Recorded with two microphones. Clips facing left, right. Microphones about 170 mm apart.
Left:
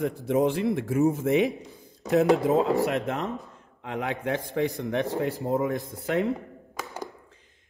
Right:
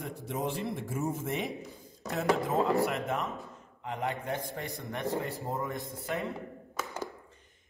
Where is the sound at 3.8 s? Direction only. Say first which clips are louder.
Left 4 dB; 90° left.